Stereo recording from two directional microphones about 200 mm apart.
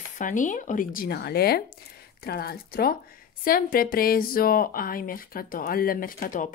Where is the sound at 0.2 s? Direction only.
40° left (ahead or behind).